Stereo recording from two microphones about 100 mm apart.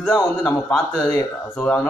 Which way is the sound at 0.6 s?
5° left (ahead or behind).